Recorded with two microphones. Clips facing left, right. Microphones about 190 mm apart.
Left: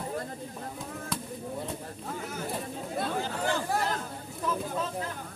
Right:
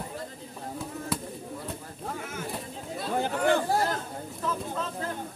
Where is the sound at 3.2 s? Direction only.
60° right (ahead or behind).